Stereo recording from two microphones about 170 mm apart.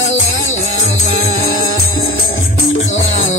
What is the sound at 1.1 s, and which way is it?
Music, 60° left (ahead or behind).